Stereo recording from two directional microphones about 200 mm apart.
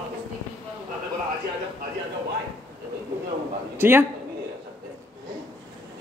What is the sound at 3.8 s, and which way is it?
Speech, 10° right (ahead or behind).